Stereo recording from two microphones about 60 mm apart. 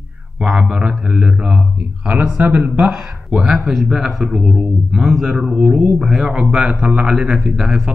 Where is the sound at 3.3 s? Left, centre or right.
Centre.